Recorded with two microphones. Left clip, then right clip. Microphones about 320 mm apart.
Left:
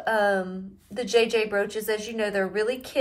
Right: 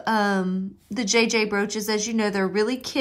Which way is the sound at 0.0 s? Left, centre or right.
Right.